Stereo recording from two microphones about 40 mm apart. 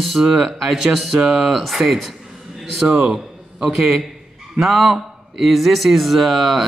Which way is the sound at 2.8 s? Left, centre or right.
Centre.